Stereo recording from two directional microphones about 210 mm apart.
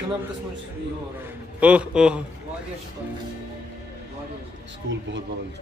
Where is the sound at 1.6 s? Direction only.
5° right (ahead or behind).